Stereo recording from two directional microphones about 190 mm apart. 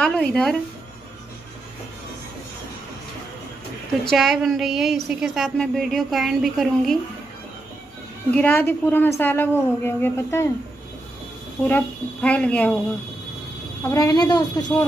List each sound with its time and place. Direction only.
0.0 s a woman's voice: 5° left (ahead or behind)
4.0 s a woman's voice: centre (ahead or behind)
8.3 s a woman's voice: 10° left (ahead or behind)
11.6 s a woman's voice: 10° left (ahead or behind)
13.8 s speech: 15° left (ahead or behind)